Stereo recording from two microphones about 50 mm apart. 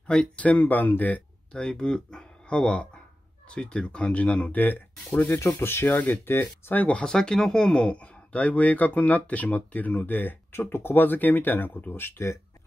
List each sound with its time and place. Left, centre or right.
0.4 s speech: left
1.5 s speech: centre; by 5.2 s left
5.6 s speech: left
7.1 s speech: centre; by 10.3 s left
10.5 s speech: left
11.9 s speech: left